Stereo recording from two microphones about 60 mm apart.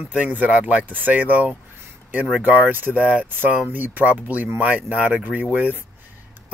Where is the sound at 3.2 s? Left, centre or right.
Right.